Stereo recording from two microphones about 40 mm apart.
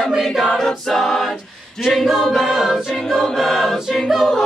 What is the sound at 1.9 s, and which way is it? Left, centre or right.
Choir, centre.